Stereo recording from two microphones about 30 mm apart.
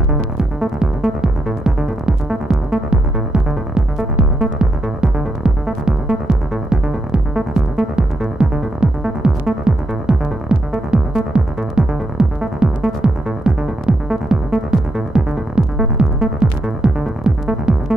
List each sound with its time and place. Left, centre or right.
0.1 s music: right
8.8 s music: right